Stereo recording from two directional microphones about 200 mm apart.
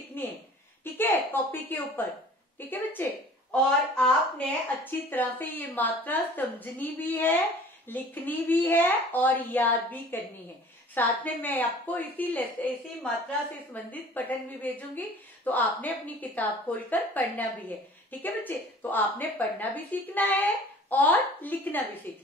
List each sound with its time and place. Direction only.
0.2 s a woman's voice: 10° left (ahead or behind)
11.0 s a woman's voice: 10° left (ahead or behind)